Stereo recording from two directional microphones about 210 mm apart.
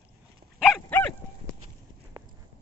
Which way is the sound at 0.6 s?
5° left (ahead or behind).